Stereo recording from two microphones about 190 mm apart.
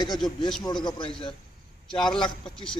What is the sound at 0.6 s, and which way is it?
Speech, 25° left (ahead or behind).